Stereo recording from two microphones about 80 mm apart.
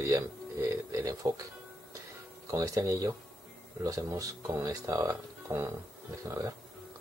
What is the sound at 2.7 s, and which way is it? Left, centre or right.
Speech, right.